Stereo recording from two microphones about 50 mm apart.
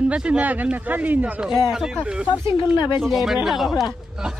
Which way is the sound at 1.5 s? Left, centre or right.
Centre.